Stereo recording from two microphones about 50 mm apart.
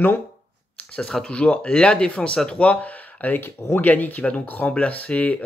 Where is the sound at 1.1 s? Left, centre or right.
Centre; by 4.6 s left.